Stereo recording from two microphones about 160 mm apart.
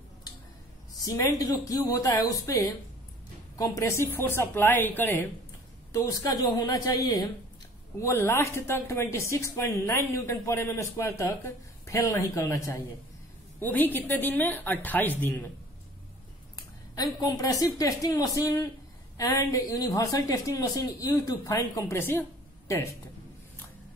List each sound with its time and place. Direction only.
1.0 s speech: 25° left (ahead or behind)
16.9 s speech: 25° left (ahead or behind)